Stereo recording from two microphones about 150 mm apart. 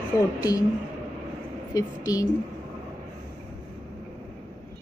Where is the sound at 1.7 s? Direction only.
25° left (ahead or behind).